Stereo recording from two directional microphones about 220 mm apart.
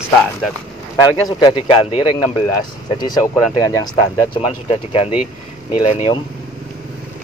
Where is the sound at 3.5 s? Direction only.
20° left (ahead or behind).